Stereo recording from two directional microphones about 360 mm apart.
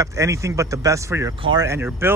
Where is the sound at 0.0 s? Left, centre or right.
Centre.